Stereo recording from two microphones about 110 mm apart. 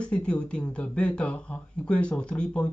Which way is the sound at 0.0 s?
10° left (ahead or behind).